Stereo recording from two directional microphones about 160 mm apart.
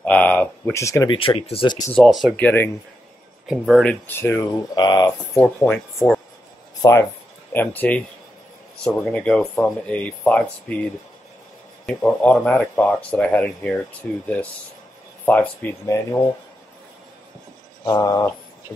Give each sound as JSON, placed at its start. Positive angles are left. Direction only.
{"t": 0.0, "sound": "speech", "side_deg": 10}
{"t": 1.1, "sound": "speech", "side_deg": 30}
{"t": 2.0, "sound": "speech", "side_deg": 0}
{"t": 2.3, "sound": "speech", "side_deg": 10}
{"t": 3.4, "sound": "speech", "side_deg": 0}
{"t": 4.1, "sound": "speech", "side_deg": 15}
{"t": 5.4, "sound": "speech", "side_deg": 10}
{"t": 15.2, "sound": "speech", "side_deg": 10}
{"t": 17.8, "sound": "speech", "side_deg": 20}